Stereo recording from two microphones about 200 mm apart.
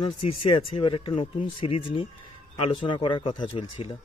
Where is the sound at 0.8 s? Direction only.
25° left (ahead or behind).